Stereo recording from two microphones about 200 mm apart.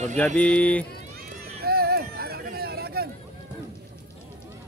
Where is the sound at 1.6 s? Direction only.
50° right (ahead or behind).